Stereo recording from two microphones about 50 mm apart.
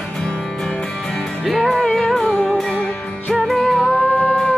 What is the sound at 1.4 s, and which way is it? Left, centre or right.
Music, centre.